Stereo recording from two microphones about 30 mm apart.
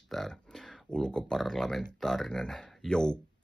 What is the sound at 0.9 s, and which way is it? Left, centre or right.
Speech, left.